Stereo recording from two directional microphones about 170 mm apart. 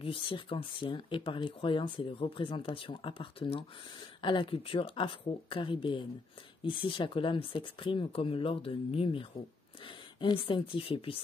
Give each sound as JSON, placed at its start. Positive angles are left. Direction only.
{"t": 0.0, "sound": "speech", "side_deg": 30}